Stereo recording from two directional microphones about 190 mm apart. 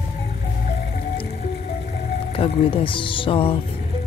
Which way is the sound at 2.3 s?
30° left (ahead or behind).